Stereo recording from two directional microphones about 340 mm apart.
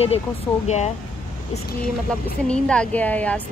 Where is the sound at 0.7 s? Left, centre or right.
Centre.